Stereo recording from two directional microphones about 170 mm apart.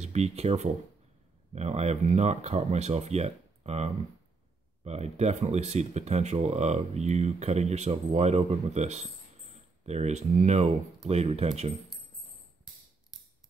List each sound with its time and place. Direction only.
0.0 s speech: 40° right (ahead or behind)